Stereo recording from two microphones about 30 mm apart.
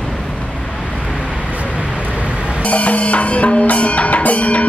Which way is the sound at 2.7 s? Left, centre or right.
Left.